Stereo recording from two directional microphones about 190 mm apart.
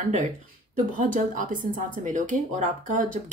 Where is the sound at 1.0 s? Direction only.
45° right (ahead or behind).